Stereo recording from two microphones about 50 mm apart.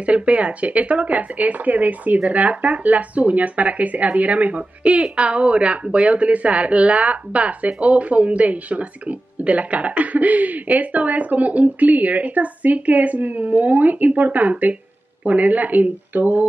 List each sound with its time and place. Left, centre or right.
0.0 s speech: right